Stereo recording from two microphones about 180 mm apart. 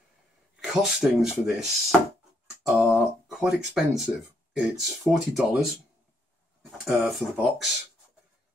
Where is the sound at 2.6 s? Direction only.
Centre (ahead or behind).